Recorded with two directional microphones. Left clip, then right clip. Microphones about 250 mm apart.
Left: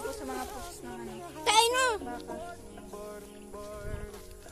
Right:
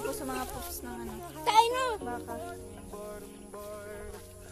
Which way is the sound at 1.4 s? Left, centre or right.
Left.